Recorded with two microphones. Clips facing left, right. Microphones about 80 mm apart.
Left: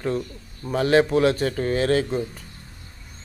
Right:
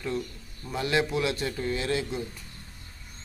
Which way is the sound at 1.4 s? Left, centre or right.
Left.